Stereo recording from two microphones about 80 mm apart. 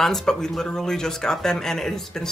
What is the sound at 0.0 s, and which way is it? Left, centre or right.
Speech, centre.